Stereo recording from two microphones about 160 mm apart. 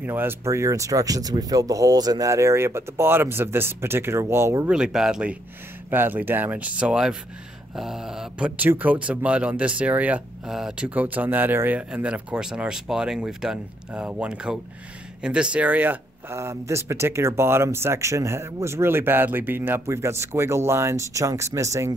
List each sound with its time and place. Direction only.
0.0 s speech: 15° right (ahead or behind)
4.6 s speech: 5° right (ahead or behind)